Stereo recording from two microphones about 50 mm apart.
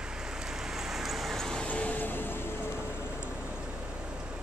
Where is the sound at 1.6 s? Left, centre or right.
Left.